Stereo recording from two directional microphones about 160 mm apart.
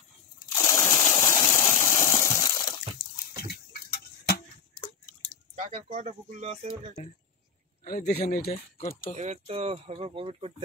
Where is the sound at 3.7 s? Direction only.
80° left.